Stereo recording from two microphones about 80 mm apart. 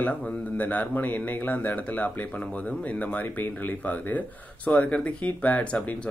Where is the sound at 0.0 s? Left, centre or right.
Centre.